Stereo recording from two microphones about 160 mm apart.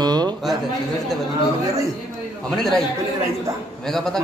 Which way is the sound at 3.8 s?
5° left (ahead or behind).